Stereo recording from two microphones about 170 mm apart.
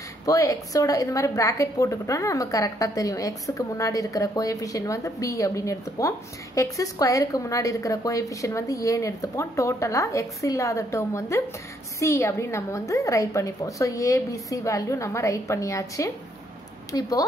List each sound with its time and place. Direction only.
0.2 s a woman's voice: 20° left (ahead or behind)